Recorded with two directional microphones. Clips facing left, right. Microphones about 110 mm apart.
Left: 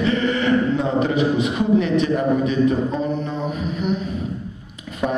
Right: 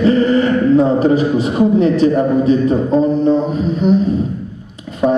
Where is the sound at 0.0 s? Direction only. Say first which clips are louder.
Right 8 dB; 35° right (ahead or behind).